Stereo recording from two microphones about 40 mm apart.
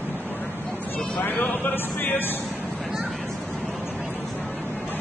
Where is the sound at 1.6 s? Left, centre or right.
Left.